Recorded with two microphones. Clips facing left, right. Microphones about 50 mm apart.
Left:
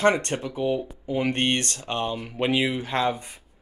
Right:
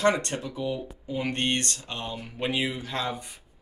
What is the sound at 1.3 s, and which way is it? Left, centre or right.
Speech, left.